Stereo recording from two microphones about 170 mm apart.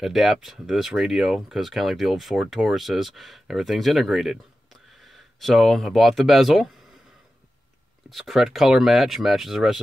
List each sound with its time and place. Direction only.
0.0 s speech: centre (ahead or behind)
8.1 s speech: centre (ahead or behind)